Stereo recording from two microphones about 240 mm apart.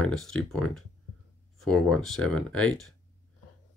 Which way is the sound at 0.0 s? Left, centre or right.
Centre.